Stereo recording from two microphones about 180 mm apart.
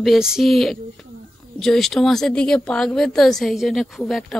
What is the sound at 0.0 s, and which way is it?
Speech, centre (ahead or behind).